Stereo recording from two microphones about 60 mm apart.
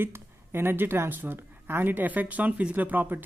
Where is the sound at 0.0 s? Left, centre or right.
Right.